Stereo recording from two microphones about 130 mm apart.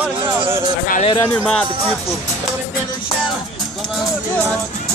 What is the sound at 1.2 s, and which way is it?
Speech, 10° left (ahead or behind).